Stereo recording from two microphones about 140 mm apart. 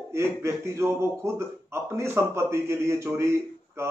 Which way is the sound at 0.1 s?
20° right (ahead or behind).